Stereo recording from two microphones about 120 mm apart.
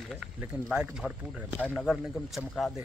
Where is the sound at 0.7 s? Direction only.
5° right (ahead or behind).